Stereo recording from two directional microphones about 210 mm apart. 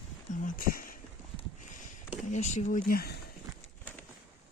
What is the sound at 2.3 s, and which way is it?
Speech, 35° left (ahead or behind).